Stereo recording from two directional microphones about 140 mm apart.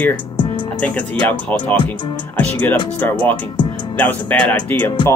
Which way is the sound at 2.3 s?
10° left (ahead or behind).